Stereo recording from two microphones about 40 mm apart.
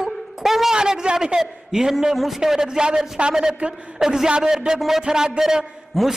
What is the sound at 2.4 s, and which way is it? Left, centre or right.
A man's voice, centre.